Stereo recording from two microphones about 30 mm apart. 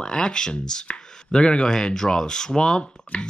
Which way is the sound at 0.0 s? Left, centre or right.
Left.